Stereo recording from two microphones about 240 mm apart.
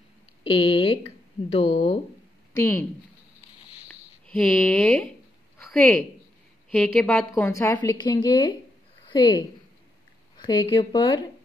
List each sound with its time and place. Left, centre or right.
0.4 s speech: left
2.5 s a woman's voice: centre
4.4 s speech: centre
6.7 s a woman's voice: centre